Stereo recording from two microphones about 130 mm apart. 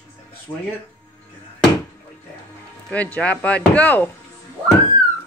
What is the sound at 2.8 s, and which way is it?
A woman's voice, 10° left (ahead or behind).